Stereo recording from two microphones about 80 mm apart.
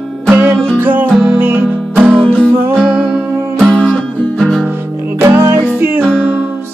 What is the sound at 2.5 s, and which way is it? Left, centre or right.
Music, right.